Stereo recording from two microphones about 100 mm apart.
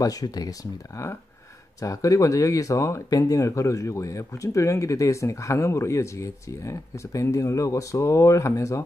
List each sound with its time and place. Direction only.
0.0 s speech: 35° left (ahead or behind)